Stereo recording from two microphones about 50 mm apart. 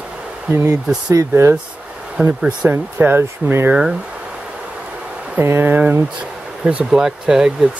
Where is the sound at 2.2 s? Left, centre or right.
Right.